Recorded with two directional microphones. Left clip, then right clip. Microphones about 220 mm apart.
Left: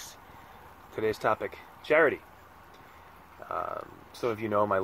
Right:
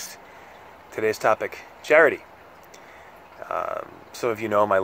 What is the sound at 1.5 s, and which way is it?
Speech, 5° right (ahead or behind).